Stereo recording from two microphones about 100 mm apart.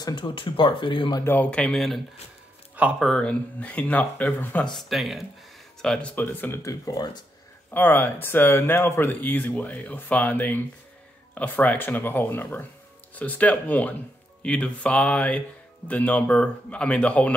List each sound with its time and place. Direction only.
0.0 s speech: 50° left (ahead or behind)
1.2 s speech: 20° left (ahead or behind)
2.7 s a sound: 15° right (ahead or behind)
3.2 s speech: 15° left (ahead or behind)
4.7 s speech: centre (ahead or behind)
6.1 s speech: 20° left (ahead or behind)
6.6 s speech: 35° left (ahead or behind)
7.7 s speech: 20° left (ahead or behind)